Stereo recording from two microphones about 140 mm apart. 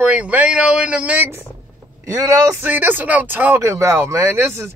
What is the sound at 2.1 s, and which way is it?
Speech, 25° right (ahead or behind).